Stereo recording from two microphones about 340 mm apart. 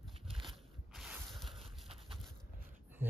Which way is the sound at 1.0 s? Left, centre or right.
Centre.